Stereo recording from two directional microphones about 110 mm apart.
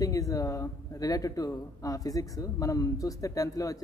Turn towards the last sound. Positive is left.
turn(degrees=30)  # may be behind; listen again after turning